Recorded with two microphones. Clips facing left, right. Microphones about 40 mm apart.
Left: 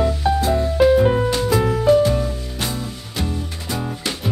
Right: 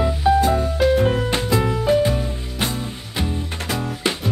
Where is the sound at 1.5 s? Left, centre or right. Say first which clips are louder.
Left 3 dB; centre.